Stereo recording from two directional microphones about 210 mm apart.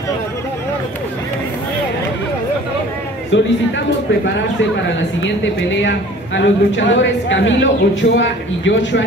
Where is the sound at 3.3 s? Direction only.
60° left (ahead or behind).